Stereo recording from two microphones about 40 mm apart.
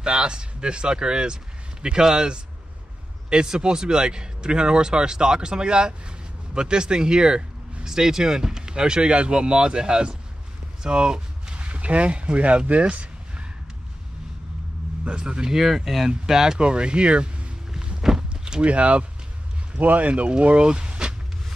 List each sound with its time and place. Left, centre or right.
0.1 s speech: centre
10.8 s a sound: right
11.6 s speech: right
15.0 s speech: right
15.5 s speech: centre
16.5 s speech: right